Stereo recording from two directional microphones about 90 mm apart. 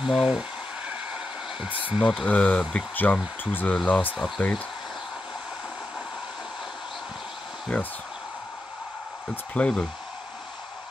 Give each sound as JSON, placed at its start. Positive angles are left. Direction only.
{"t": 0.1, "sound": "a sound", "side_deg": -10}
{"t": 1.9, "sound": "speech", "side_deg": -10}
{"t": 2.1, "sound": "speech", "side_deg": 15}
{"t": 7.7, "sound": "speech", "side_deg": 15}
{"t": 9.3, "sound": "speech", "side_deg": 15}